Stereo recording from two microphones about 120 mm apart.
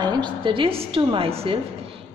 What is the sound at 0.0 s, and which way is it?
A woman's voice, 40° right (ahead or behind).